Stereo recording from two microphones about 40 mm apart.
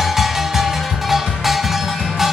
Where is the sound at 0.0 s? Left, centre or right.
Centre.